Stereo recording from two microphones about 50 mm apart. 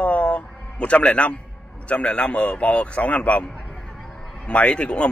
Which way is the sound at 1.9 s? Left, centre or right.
Left.